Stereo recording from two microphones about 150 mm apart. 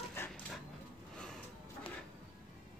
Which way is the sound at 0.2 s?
15° left (ahead or behind).